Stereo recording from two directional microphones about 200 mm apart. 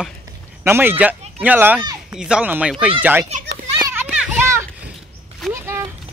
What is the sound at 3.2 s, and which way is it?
Speech, 35° right (ahead or behind).